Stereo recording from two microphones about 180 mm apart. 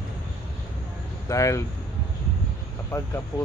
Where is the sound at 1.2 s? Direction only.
15° left (ahead or behind).